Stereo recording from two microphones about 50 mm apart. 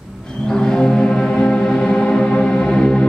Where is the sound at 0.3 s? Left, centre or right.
Centre.